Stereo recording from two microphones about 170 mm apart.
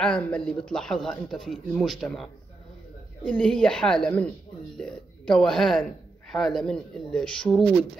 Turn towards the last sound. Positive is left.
turn(degrees=5)  # may be behind; listen again after turning